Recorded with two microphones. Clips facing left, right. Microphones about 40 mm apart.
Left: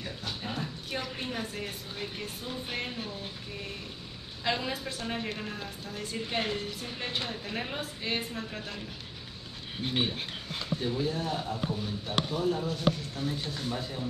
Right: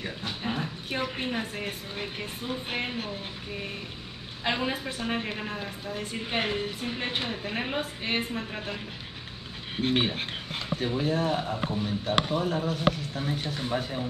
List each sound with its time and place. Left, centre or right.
0.0 s a woman's voice: right